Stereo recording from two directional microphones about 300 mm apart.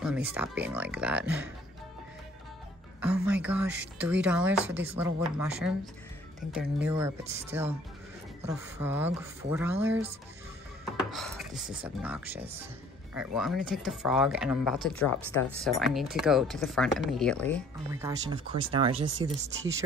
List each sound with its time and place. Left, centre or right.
0.0 s speech: centre
3.0 s speech: centre
6.9 s speech: centre
11.0 s speech: centre
17.9 s speech: centre